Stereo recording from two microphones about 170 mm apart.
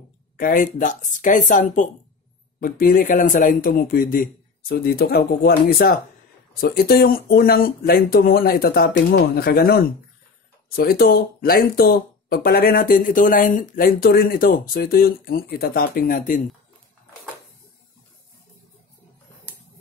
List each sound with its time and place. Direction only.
0.4 s speech: 55° left (ahead or behind)